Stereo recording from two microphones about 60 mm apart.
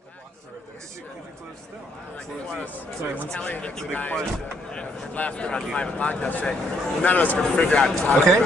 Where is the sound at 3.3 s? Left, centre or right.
Centre.